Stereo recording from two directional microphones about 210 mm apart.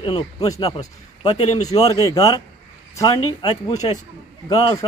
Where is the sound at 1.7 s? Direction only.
15° left (ahead or behind).